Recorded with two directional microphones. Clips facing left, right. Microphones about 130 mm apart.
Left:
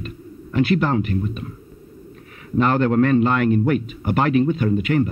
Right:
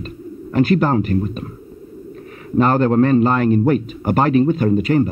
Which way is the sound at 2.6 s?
40° right (ahead or behind).